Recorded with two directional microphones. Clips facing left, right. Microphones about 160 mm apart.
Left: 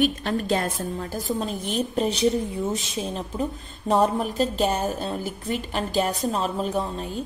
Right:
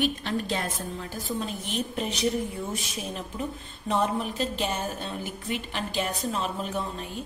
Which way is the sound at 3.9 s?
40° left (ahead or behind).